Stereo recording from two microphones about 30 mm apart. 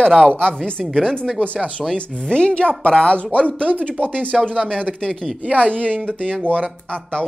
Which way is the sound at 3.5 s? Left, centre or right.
Right.